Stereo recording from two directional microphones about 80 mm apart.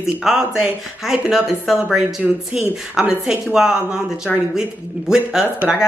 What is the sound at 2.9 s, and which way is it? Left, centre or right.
Speech, centre.